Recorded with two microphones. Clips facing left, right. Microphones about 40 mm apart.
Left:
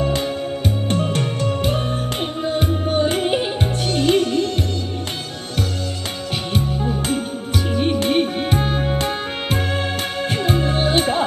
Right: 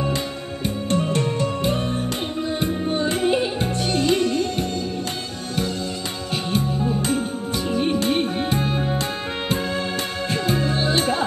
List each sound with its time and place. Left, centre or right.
2.4 s music: left
3.0 s music: left
7.7 s music: left
10.4 s music: left